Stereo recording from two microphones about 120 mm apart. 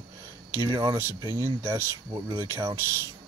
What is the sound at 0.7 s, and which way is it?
Speech, 35° right (ahead or behind).